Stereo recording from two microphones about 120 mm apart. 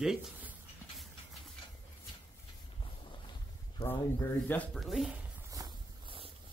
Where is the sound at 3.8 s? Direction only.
15° left (ahead or behind).